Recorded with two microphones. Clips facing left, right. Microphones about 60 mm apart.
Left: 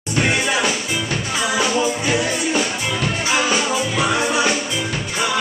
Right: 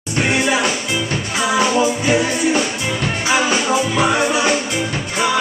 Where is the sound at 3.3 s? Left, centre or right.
Right.